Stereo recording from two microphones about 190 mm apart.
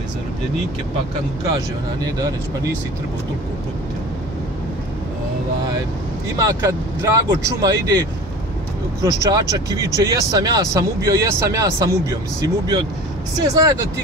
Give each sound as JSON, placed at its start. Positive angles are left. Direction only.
{"t": 2.1, "sound": "speech", "side_deg": -20}
{"t": 6.3, "sound": "speech", "side_deg": -15}